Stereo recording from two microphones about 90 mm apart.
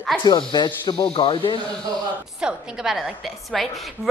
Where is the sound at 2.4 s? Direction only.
5° right (ahead or behind).